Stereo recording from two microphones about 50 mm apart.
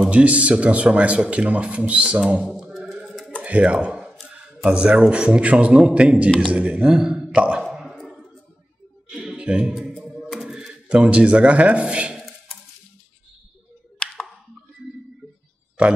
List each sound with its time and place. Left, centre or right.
0.1 s speech: right
2.4 s mantra: centre
3.4 s speech: right
7.6 s clicking: centre
9.4 s speech: centre